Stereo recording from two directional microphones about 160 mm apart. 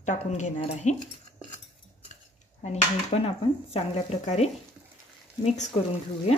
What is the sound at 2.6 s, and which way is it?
Stir, 40° left (ahead or behind).